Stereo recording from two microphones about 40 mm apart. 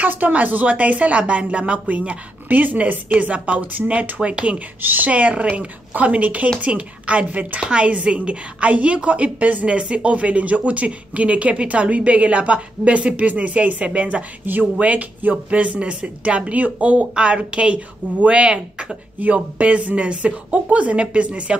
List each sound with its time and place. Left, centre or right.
0.0 s a woman's voice: right
3.7 s speech: right
4.2 s speech: right
4.8 s speech: right
9.7 s speech: right
14.4 s speech: right
14.8 s speech: right